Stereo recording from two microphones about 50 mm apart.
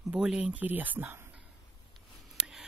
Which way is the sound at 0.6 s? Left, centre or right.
Right.